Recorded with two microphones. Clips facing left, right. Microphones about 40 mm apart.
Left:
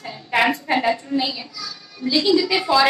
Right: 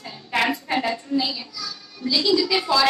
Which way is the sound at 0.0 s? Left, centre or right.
Centre.